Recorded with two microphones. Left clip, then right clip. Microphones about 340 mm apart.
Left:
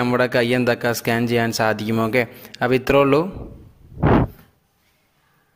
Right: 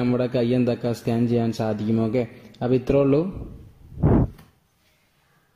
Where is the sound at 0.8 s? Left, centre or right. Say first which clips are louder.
Left 5 dB; left.